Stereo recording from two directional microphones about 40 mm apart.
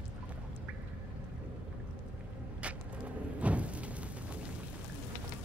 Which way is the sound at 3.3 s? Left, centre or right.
Right.